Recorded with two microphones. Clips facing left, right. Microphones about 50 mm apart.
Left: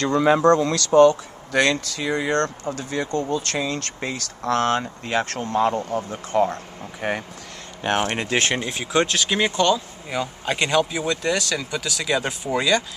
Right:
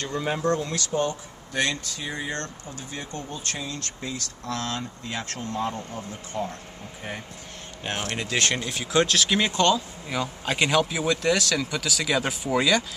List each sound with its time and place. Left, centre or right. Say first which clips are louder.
0.0 s speech: left 10 dB; left
3.3 s speech: left 9 dB; left
7.0 s speech: left 10 dB; left
8.0 s speech: left 4 dB; left
8.8 s speech: even; centre